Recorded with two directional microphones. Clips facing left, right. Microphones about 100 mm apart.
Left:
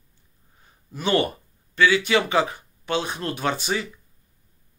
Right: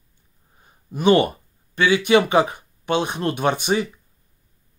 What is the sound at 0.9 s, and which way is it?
Speech, 15° right (ahead or behind).